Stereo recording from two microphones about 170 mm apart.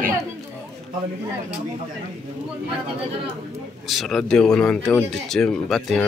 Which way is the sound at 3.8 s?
Centre (ahead or behind).